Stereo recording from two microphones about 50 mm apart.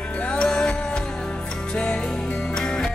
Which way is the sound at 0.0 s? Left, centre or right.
Left.